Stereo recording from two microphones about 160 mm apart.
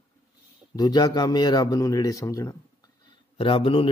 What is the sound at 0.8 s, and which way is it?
A man's voice, 25° left (ahead or behind).